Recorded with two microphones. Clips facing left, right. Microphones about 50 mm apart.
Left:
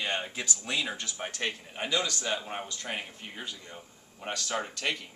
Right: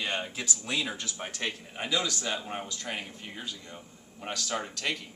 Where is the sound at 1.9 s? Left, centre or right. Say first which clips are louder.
Even; centre.